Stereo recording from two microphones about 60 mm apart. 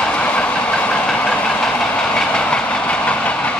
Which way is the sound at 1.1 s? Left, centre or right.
Left.